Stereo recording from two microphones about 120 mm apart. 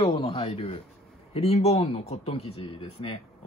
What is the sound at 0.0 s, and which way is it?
Speech, 45° left (ahead or behind).